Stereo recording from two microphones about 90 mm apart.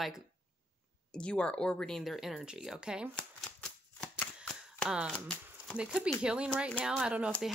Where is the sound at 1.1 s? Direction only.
10° left (ahead or behind); by 3.1 s 10° right (ahead or behind).